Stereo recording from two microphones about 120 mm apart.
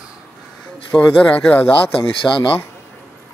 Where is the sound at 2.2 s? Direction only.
45° left (ahead or behind).